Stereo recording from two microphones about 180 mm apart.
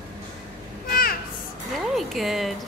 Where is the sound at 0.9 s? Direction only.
55° left (ahead or behind).